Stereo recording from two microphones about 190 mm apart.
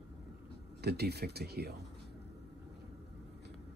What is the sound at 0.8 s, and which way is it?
Speech, 60° right (ahead or behind).